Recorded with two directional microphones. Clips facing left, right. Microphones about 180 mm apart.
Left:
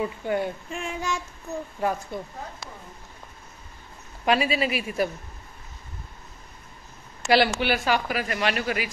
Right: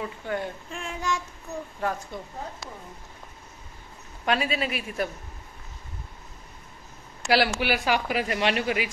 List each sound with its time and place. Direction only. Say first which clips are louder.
0.3 s child singing: left 2 dB; 10° left (ahead or behind)
1.8 s speech: left 3 dB; 10° left (ahead or behind)
4.2 s child singing: left 3 dB; 5° left (ahead or behind)
7.2 s speech: left 2 dB; 5° right (ahead or behind)
8.2 s a man's voice: right 1 dB; 25° right (ahead or behind)